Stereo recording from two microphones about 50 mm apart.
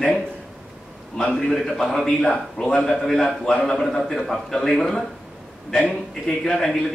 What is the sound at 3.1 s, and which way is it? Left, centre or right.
A man's voice, centre.